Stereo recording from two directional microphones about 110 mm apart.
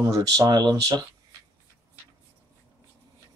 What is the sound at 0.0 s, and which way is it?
Speech, 35° right (ahead or behind).